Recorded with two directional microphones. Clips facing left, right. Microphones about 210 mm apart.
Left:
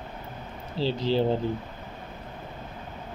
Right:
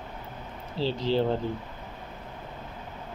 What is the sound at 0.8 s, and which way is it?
Speech, 15° right (ahead or behind).